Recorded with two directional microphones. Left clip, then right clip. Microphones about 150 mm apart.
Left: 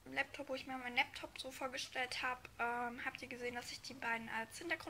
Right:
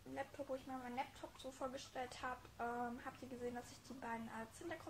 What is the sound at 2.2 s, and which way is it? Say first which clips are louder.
A woman's voice: left 5 dB; 15° left (ahead or behind).